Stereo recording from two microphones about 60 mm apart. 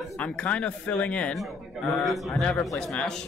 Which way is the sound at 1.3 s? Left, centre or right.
Centre.